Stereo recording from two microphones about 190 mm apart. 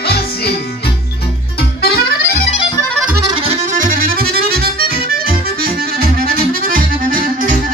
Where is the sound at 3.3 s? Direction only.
35° right (ahead or behind).